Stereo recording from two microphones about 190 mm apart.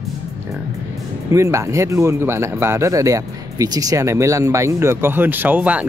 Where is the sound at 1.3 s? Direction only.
15° right (ahead or behind).